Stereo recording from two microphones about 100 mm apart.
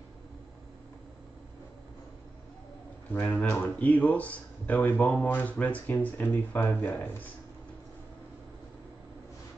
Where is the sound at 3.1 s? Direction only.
20° left (ahead or behind).